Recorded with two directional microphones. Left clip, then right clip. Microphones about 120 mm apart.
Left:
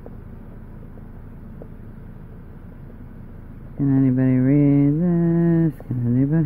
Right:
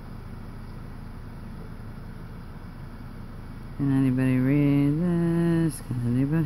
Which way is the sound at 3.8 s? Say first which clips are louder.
Left 5 dB; 25° left (ahead or behind).